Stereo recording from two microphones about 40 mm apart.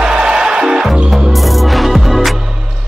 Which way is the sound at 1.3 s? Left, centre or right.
Centre.